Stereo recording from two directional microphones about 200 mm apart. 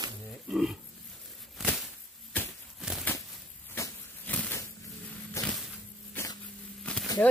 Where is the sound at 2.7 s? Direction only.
Centre (ahead or behind).